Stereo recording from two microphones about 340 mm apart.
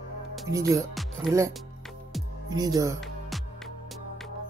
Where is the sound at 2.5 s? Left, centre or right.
Centre.